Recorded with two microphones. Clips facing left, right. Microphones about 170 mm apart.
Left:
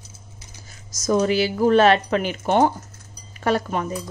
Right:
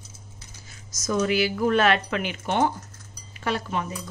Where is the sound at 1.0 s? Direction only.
35° left (ahead or behind).